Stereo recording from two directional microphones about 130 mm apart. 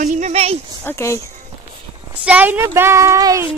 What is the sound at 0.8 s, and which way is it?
Speech, 20° left (ahead or behind).